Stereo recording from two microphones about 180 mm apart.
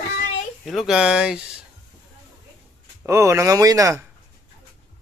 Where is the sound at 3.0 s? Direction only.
15° right (ahead or behind).